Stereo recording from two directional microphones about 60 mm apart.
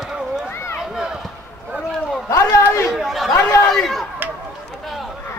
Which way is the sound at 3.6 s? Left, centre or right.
Centre.